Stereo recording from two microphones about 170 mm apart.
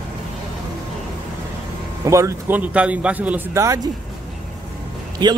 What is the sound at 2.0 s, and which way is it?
Speech, 15° right (ahead or behind).